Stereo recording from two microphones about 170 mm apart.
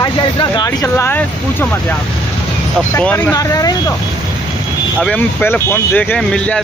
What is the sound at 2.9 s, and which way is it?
Speech, 10° left (ahead or behind).